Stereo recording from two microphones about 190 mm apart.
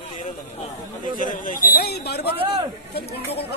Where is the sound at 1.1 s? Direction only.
45° left (ahead or behind).